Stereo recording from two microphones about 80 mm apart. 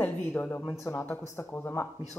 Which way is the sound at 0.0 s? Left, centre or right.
Left.